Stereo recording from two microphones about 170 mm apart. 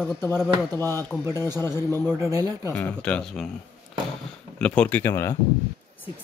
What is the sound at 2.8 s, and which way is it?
Speech, 10° left (ahead or behind).